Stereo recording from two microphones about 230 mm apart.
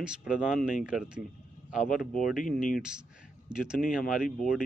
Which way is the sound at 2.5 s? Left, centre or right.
Left.